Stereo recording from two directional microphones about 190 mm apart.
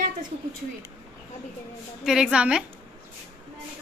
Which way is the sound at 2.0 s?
5° right (ahead or behind).